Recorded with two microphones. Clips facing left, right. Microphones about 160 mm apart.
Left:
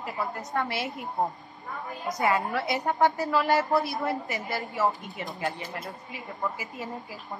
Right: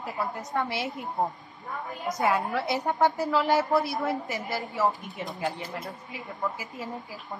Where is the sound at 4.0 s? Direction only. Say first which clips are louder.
Right 1 dB; centre (ahead or behind).